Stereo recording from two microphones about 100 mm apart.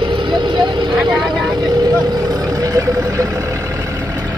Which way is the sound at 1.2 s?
Centre (ahead or behind).